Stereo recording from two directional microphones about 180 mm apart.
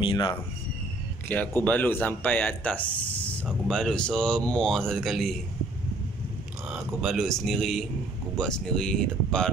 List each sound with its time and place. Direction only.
0.0 s speech: 25° left (ahead or behind)
1.6 s speech: 10° left (ahead or behind)
6.7 s speech: centre (ahead or behind)